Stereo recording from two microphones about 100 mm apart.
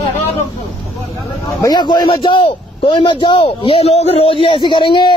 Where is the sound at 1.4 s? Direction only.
40° left (ahead or behind).